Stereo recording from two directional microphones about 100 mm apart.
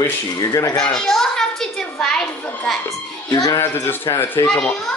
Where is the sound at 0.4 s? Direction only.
35° left (ahead or behind).